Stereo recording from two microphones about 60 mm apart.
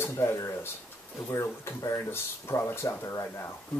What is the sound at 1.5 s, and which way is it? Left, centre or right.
Speech, left.